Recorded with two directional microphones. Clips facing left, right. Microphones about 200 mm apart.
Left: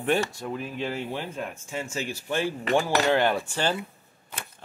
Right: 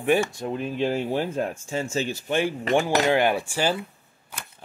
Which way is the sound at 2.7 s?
15° right (ahead or behind).